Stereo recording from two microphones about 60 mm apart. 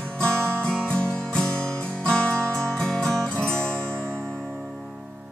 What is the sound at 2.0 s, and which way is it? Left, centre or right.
Music, centre.